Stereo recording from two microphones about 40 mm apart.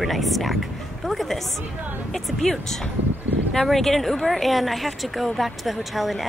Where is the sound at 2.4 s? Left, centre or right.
Centre.